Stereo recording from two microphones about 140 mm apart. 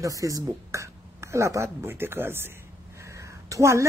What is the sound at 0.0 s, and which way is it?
A woman's voice, 25° right (ahead or behind).